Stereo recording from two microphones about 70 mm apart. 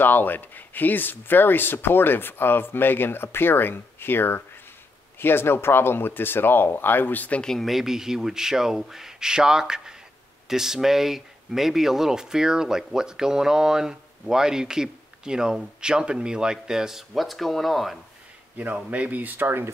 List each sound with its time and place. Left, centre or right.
0.0 s speech: left
7.4 s speech: centre
18.9 s speech: right